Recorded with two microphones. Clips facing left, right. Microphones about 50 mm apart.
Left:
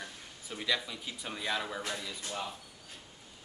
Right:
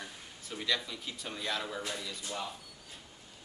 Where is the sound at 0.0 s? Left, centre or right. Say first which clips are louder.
Left 1 dB; centre.